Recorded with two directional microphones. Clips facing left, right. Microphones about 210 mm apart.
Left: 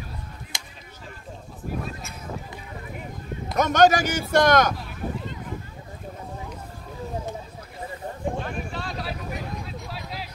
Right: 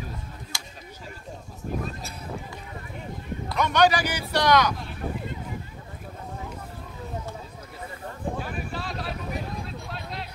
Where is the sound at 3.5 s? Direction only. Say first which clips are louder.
Left 3 dB; 45° left (ahead or behind).